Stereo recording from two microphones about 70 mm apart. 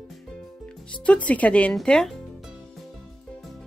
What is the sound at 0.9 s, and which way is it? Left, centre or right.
Speech, centre.